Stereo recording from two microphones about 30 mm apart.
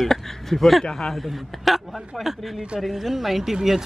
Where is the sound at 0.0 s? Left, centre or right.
Centre.